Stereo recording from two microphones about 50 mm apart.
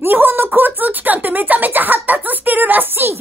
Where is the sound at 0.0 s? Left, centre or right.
Right.